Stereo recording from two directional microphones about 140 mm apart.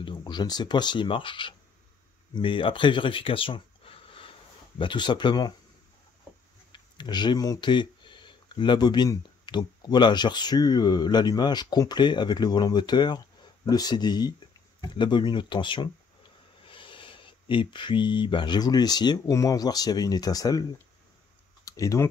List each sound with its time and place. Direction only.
0.0 s speech: 35° left (ahead or behind)
6.7 s speech: 30° left (ahead or behind)
21.6 s speech: 25° left (ahead or behind)